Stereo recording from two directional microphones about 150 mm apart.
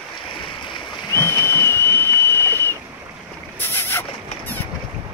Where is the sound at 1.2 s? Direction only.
15° left (ahead or behind).